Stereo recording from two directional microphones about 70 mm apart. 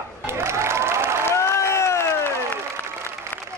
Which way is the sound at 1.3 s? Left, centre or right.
Left.